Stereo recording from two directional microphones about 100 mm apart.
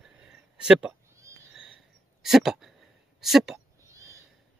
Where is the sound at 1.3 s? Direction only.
30° right (ahead or behind).